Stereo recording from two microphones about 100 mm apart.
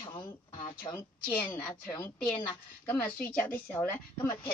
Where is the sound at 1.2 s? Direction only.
15° left (ahead or behind).